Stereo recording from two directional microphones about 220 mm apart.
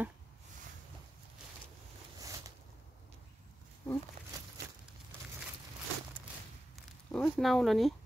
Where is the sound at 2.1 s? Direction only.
15° right (ahead or behind).